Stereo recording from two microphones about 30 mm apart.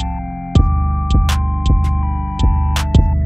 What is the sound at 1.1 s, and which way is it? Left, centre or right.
Music, centre.